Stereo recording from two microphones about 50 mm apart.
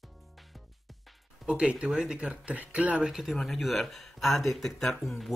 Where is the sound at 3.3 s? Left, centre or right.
Centre.